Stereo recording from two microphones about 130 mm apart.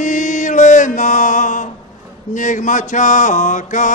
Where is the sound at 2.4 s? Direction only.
75° left (ahead or behind).